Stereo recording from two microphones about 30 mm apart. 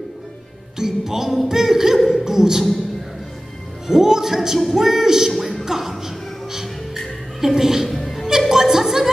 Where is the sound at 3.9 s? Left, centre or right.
Centre.